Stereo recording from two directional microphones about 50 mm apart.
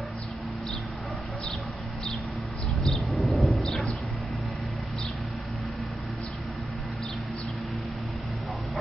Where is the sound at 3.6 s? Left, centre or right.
Centre.